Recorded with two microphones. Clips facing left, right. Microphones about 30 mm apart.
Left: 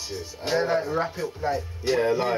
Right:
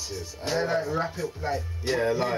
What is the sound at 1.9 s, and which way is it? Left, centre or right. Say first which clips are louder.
Speech: left 2 dB; centre.